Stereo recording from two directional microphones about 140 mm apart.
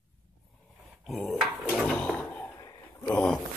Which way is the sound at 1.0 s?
Centre (ahead or behind).